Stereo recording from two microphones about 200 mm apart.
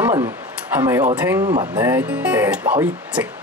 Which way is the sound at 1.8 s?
10° right (ahead or behind).